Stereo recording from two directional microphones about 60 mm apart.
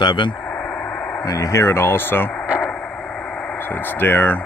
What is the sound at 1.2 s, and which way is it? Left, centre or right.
Speech, left.